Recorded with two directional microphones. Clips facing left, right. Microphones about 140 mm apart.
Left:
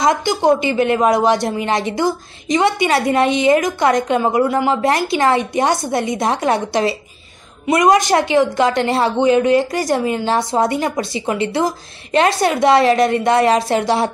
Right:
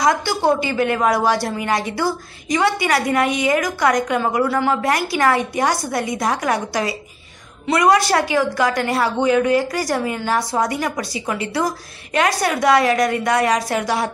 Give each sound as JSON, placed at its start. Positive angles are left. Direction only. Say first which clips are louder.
{"t": 0.0, "sound": "a woman's voice", "louder": "left 2 dB", "side_deg": 20}